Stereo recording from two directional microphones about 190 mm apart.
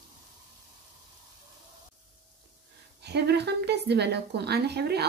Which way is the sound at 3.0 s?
60° right (ahead or behind).